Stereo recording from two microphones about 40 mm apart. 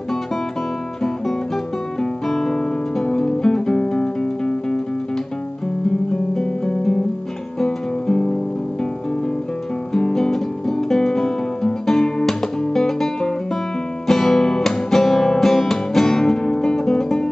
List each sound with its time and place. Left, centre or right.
2.0 s music: centre
6.3 s music: centre
9.9 s music: centre